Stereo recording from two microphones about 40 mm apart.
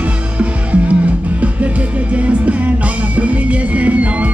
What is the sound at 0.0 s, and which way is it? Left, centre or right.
Music, right.